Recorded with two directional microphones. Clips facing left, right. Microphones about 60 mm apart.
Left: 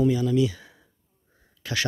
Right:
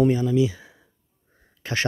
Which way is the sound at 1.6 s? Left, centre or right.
Right.